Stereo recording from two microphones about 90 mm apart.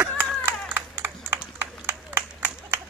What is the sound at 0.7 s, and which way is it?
Clapping, 25° right (ahead or behind).